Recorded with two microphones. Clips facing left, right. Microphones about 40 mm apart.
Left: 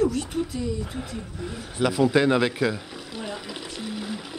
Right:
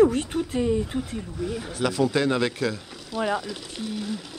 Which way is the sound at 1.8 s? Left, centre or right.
Centre.